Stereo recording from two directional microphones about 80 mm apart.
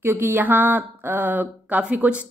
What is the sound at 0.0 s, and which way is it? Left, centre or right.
Speech, right.